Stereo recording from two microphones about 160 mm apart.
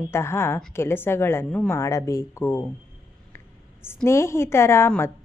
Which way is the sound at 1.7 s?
20° left (ahead or behind).